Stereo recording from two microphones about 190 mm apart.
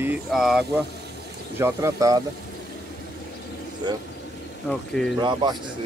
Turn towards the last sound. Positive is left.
turn(degrees=-25)  # may be behind; listen again after turning